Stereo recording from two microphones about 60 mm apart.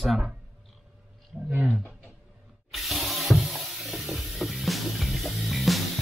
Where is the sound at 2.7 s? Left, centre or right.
Centre.